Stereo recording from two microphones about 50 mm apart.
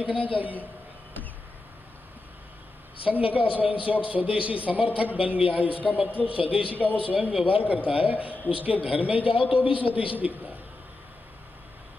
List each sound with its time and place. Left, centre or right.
0.0 s a man's voice: right
3.1 s a man's voice: right